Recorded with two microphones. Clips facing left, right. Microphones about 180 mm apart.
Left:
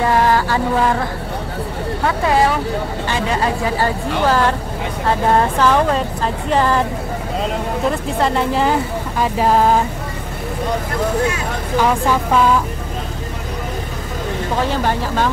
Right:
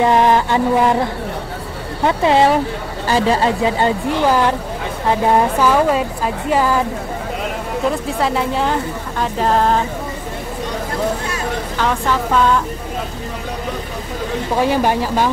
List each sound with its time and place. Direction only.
0.0 s music: 20° right (ahead or behind)
2.0 s music: 25° right (ahead or behind)
3.1 s a man's voice: 30° right (ahead or behind)
3.6 s a woman's voice: 20° right (ahead or behind)
8.2 s a woman's voice: centre (ahead or behind)
11.8 s speech: 10° left (ahead or behind)
14.6 s a woman's voice: 10° right (ahead or behind)